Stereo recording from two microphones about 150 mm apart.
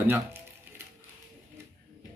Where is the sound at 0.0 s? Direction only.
15° right (ahead or behind).